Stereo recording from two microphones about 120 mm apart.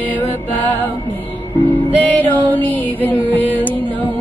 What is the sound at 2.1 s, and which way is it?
Music, 15° left (ahead or behind).